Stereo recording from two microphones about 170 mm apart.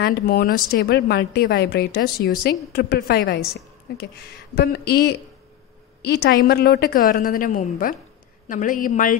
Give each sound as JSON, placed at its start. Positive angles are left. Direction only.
{"t": 0.0, "sound": "speech", "side_deg": 60}
{"t": 4.6, "sound": "speech", "side_deg": 70}
{"t": 6.0, "sound": "speech", "side_deg": 85}